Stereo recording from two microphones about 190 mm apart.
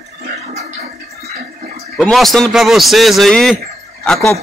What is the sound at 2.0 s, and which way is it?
Speech, centre (ahead or behind).